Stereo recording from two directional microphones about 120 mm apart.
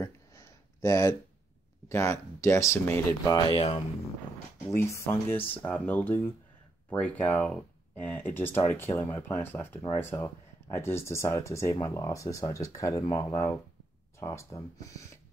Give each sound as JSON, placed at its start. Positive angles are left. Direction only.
{"t": 0.0, "sound": "a sound", "side_deg": 25}
{"t": 1.9, "sound": "speech", "side_deg": 25}
{"t": 3.5, "sound": "speech", "side_deg": 65}
{"t": 4.6, "sound": "speech", "side_deg": 25}